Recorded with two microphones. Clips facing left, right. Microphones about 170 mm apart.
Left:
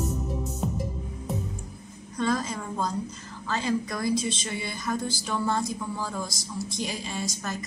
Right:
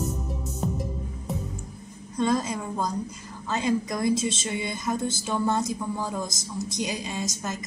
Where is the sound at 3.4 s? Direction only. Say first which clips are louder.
Right 2 dB; 20° right (ahead or behind).